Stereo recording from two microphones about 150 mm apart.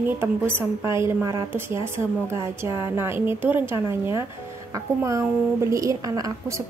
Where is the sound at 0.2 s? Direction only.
15° right (ahead or behind).